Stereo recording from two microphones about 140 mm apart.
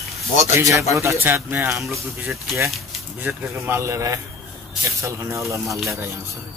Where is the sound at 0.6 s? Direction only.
20° right (ahead or behind).